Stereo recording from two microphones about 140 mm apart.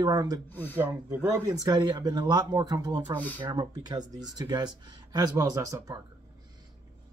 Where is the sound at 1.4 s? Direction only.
30° right (ahead or behind).